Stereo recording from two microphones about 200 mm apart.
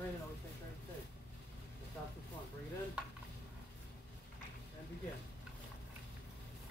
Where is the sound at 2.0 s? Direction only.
Centre (ahead or behind).